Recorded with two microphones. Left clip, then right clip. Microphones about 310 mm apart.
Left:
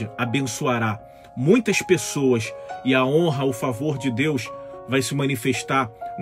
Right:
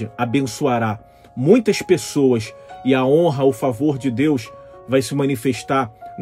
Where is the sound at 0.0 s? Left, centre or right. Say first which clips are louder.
Right 4 dB; centre.